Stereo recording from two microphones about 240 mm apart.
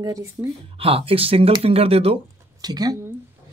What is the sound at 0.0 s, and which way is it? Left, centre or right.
Speech, centre.